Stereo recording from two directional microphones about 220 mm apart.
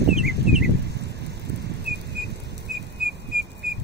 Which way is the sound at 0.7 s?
50° right (ahead or behind).